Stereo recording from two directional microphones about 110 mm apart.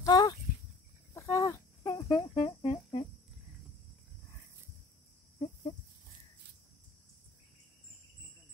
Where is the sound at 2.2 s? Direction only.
55° left (ahead or behind).